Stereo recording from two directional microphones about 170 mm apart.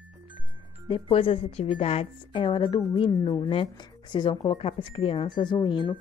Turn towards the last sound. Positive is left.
turn(degrees=25)  # may be behind; listen again after turning